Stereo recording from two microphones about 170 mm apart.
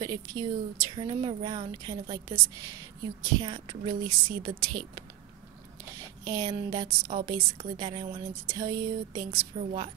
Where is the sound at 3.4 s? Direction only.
30° right (ahead or behind).